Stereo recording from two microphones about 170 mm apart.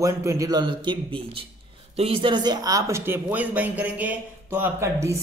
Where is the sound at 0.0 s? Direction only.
20° right (ahead or behind).